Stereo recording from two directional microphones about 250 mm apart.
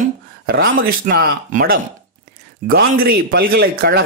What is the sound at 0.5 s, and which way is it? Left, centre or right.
A man's voice, right.